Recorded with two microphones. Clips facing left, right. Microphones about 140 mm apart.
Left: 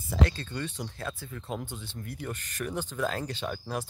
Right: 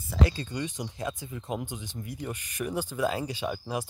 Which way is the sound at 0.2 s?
10° right (ahead or behind).